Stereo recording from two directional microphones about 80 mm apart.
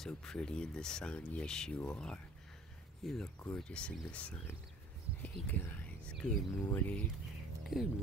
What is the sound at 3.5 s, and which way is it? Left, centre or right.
Speech, centre.